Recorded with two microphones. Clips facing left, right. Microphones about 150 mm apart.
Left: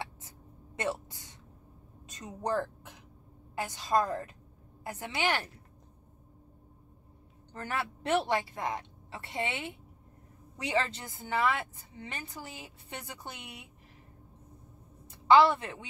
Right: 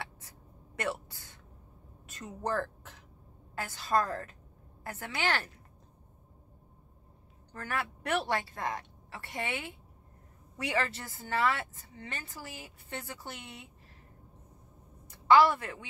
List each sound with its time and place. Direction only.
0.7 s a woman's voice: 20° left (ahead or behind)
7.5 s a woman's voice: 25° left (ahead or behind)
15.0 s a woman's voice: 20° left (ahead or behind)